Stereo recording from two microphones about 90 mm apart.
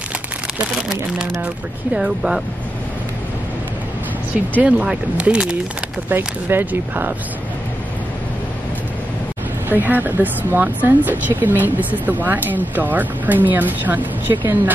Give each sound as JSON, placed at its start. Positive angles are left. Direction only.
{"t": 2.0, "sound": "speech", "side_deg": -10}
{"t": 4.6, "sound": "speech", "side_deg": -10}
{"t": 6.0, "sound": "speech", "side_deg": -20}
{"t": 9.7, "sound": "speech", "side_deg": -20}